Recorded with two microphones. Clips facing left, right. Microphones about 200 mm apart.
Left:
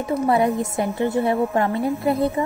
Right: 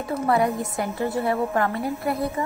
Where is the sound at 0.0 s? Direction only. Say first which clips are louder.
Left 3 dB; 20° left (ahead or behind).